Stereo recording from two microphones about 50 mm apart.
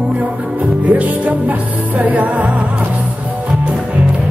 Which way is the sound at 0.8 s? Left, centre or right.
Right.